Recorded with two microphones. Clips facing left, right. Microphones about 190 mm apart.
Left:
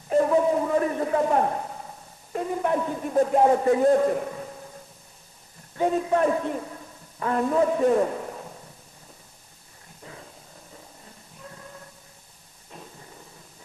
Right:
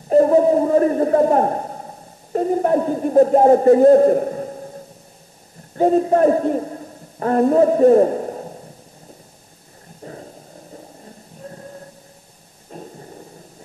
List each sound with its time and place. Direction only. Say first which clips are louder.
0.1 s a man's voice: right 7 dB; 40° right (ahead or behind)
10.0 s a sound: right 9 dB; 40° right (ahead or behind)
12.7 s thunder: right 9 dB; 40° right (ahead or behind)